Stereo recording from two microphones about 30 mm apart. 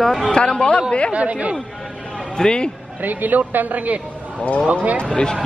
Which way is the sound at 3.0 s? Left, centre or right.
Right.